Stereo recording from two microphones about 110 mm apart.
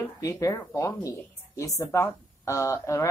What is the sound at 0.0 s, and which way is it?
Speech, 30° left (ahead or behind).